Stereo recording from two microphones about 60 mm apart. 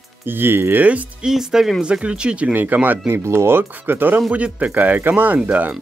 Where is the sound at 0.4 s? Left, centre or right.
Right.